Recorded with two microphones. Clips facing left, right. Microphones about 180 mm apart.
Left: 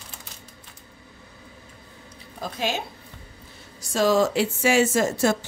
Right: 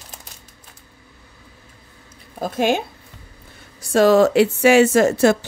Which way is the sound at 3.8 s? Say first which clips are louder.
Right 7 dB; 60° right (ahead or behind).